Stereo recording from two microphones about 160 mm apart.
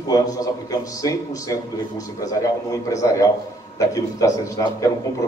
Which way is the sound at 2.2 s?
20° left (ahead or behind).